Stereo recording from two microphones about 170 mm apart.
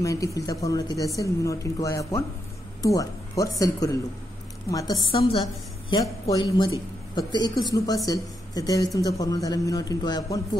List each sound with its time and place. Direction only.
0.0 s speech: 20° left (ahead or behind)